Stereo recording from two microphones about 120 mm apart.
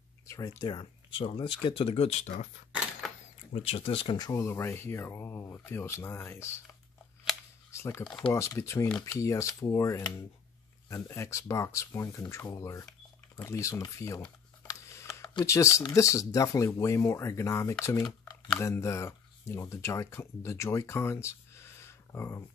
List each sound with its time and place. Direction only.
0.3 s speech: 30° left (ahead or behind); by 2.4 s 70° left (ahead or behind)
3.0 s cash register: centre (ahead or behind)
3.5 s speech: 55° left (ahead or behind)
4.2 s speech: 25° left (ahead or behind)
7.7 s speech: 20° left (ahead or behind)
14.7 s a sound: 25° left (ahead or behind)
15.4 s speech: 25° left (ahead or behind)